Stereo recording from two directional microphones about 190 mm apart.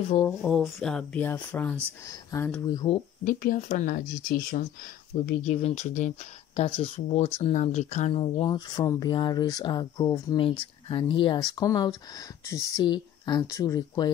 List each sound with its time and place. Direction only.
0.1 s speech: 20° left (ahead or behind)
0.4 s speech: 5° left (ahead or behind); by 3.0 s 25° left (ahead or behind)
3.3 s speech: 45° left (ahead or behind)
5.4 s speech: 35° left (ahead or behind)